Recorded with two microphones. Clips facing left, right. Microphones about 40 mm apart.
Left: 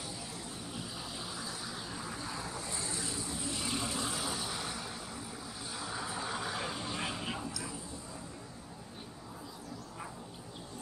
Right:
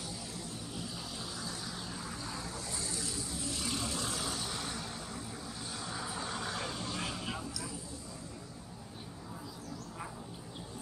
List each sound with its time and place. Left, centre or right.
1.3 s vehicle: centre
2.8 s vehicle: left